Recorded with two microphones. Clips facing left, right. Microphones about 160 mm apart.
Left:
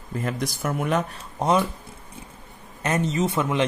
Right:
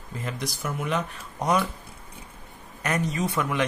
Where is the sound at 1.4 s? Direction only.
25° left (ahead or behind).